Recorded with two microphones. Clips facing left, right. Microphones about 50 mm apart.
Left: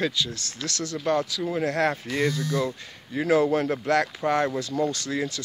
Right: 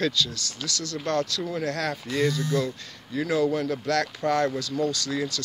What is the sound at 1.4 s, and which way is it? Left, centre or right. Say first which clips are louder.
Speech: left 4 dB; left.